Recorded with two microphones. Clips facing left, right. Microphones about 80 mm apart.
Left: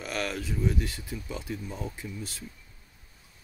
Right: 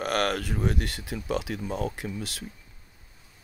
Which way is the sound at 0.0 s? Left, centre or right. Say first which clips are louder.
Right 6 dB; right.